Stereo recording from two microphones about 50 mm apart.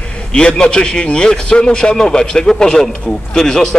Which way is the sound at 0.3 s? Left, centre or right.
Centre.